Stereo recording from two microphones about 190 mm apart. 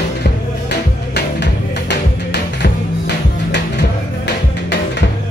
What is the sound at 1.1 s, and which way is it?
Music, 65° left (ahead or behind).